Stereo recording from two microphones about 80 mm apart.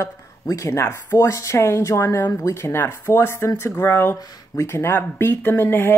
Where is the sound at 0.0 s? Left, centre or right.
Left.